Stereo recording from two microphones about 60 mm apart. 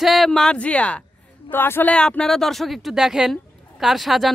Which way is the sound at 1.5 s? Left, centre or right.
Left.